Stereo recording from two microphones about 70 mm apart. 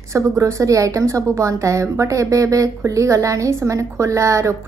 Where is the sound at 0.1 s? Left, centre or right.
Right.